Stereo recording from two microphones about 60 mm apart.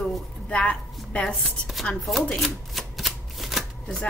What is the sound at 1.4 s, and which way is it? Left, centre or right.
Chopping, centre.